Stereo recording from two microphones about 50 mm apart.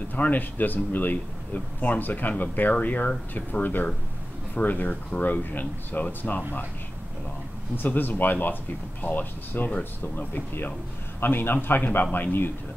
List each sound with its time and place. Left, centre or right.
0.1 s speech: left
7.7 s a man's voice: left